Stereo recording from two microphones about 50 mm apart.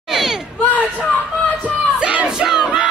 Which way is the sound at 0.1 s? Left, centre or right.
Centre.